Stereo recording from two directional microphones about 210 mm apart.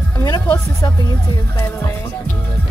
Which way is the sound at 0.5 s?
15° left (ahead or behind).